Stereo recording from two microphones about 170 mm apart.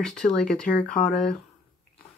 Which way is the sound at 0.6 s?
55° left (ahead or behind).